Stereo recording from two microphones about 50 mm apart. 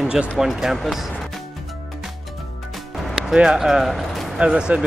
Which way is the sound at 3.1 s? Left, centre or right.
Centre.